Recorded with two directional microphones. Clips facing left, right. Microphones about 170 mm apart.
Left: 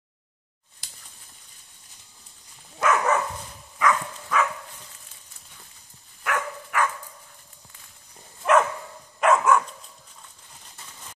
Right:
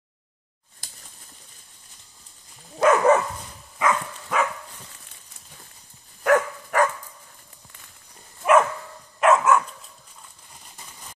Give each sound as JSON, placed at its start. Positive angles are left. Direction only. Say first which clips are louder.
{"t": 2.8, "sound": "dog", "louder": "right 6 dB", "side_deg": -30}
{"t": 3.8, "sound": "a sound", "louder": "even", "side_deg": -25}
{"t": 6.2, "sound": "dog", "louder": "right 9 dB", "side_deg": -40}
{"t": 8.4, "sound": "dog", "louder": "right 2 dB", "side_deg": -5}